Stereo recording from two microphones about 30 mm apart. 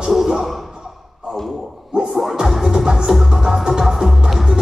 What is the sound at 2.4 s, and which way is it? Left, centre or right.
Music, centre.